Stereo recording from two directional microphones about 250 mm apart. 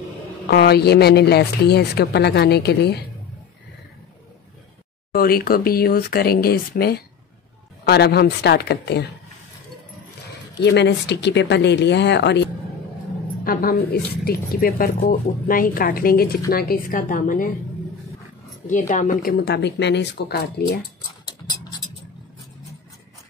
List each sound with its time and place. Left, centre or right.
0.5 s speech: left
5.1 s speech: left
10.6 s a woman's voice: left
18.7 s speech: left